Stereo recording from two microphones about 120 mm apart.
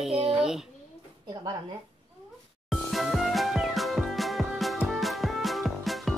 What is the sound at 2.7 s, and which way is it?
Music, centre (ahead or behind).